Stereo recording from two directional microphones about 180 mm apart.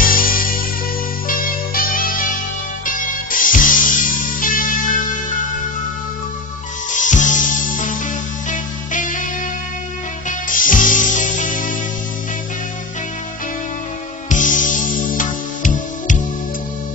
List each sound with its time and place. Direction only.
0.0 s music: 50° left (ahead or behind)
3.3 s music: 50° left (ahead or behind)
6.9 s music: 45° left (ahead or behind)
10.5 s music: 50° left (ahead or behind)
14.3 s music: 45° left (ahead or behind)